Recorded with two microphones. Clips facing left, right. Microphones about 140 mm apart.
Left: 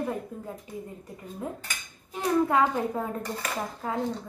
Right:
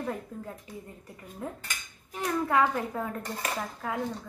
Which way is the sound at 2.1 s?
20° left (ahead or behind).